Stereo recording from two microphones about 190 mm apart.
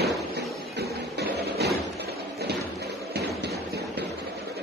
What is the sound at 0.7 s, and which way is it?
Music, 60° right (ahead or behind).